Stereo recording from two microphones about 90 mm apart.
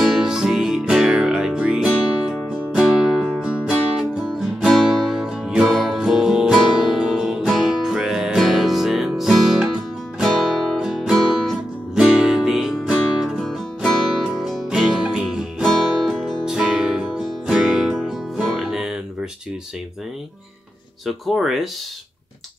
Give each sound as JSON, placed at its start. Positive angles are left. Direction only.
{"t": 0.0, "sound": "music", "side_deg": -5}
{"t": 21.0, "sound": "speech", "side_deg": 0}